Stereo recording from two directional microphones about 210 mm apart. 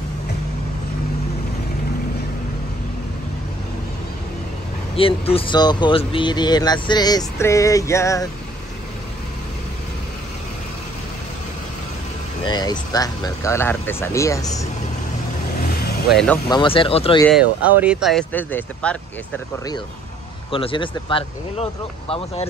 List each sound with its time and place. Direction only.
4.9 s speech: 25° left (ahead or behind)
12.4 s speech: 20° left (ahead or behind)
16.4 s speech: 25° left (ahead or behind)
17.3 s speech: 5° right (ahead or behind)
20.5 s speech: 25° left (ahead or behind)